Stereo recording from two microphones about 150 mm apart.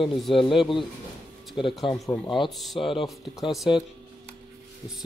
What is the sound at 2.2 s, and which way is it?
Speech, 30° left (ahead or behind).